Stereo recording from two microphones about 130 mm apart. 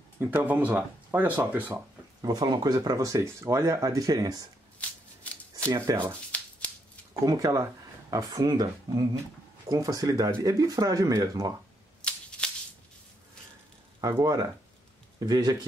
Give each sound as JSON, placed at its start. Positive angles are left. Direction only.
{"t": 0.2, "sound": "speech", "side_deg": -15}
{"t": 2.2, "sound": "speech", "side_deg": -30}
{"t": 4.7, "sound": "shuffling cards", "side_deg": 10}
{"t": 5.9, "sound": "speech", "side_deg": -25}
{"t": 6.3, "sound": "a sound", "side_deg": 10}
{"t": 7.2, "sound": "speech", "side_deg": -25}
{"t": 12.0, "sound": "a sound", "side_deg": 10}
{"t": 14.0, "sound": "speech", "side_deg": -30}